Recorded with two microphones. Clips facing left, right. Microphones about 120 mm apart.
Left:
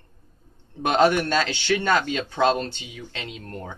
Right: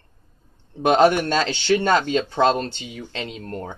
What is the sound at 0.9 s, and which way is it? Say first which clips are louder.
Speech: right 3 dB; 20° right (ahead or behind).